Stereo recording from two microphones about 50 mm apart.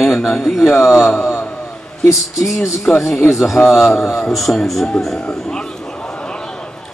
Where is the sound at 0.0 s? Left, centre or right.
Centre.